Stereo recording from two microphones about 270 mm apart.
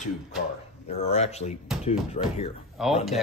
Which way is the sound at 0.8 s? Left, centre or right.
Left.